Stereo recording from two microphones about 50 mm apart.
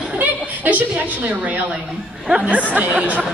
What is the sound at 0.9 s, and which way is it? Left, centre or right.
A woman's voice, right.